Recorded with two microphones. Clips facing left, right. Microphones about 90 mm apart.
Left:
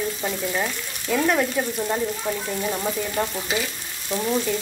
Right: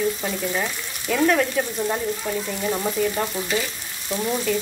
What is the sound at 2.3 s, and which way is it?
Speech, 20° left (ahead or behind).